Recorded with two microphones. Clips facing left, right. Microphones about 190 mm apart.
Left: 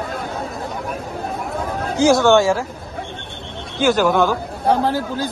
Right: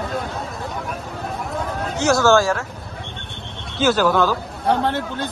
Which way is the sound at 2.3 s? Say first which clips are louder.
Left 2 dB; 25° left (ahead or behind).